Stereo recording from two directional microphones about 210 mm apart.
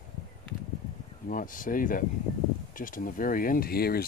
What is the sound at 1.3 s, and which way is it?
Speech, 40° left (ahead or behind).